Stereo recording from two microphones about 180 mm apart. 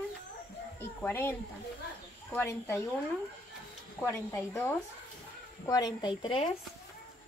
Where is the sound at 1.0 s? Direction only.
15° left (ahead or behind).